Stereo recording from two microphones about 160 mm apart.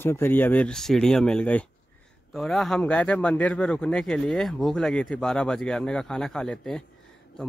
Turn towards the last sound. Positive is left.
turn(degrees=5)  # may be behind; listen again after turning